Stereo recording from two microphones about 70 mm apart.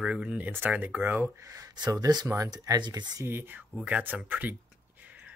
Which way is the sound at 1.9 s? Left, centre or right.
Right.